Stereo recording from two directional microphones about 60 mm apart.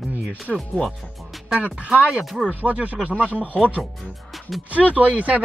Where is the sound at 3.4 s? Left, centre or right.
Centre.